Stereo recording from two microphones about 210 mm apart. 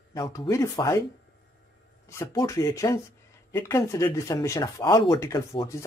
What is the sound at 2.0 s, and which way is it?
Speech, 15° left (ahead or behind).